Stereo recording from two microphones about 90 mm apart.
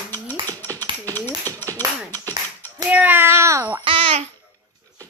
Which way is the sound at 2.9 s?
20° right (ahead or behind).